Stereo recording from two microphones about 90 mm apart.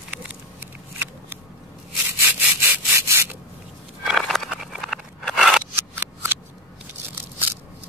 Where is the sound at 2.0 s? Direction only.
25° right (ahead or behind).